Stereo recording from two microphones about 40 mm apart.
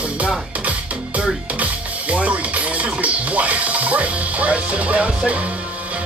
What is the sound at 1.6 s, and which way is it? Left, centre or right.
Music, right.